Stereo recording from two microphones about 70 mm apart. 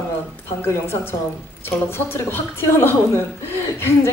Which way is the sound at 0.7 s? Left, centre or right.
Left.